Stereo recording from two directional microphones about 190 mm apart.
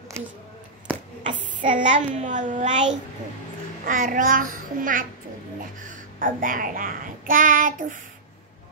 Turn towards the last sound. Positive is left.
turn(degrees=-45)  # may be behind; listen again after turning